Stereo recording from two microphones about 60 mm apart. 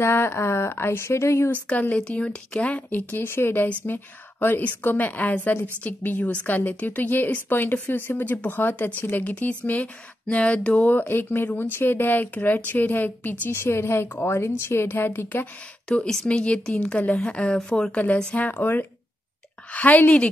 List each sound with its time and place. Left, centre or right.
0.0 s speech: left
1.5 s speech: left
3.3 s speech: left; by 10.9 s centre
10.9 s speech: left
13.6 s speech: left
15.9 s a woman's voice: centre; by 20.2 s left